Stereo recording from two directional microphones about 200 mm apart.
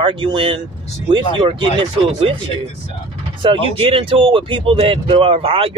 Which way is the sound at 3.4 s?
25° right (ahead or behind).